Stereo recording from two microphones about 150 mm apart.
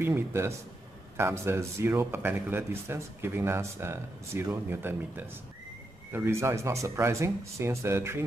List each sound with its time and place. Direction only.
0.0 s speech: 15° right (ahead or behind)